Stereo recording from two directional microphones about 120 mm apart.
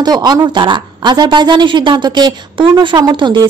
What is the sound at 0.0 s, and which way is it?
A woman's voice, 35° right (ahead or behind).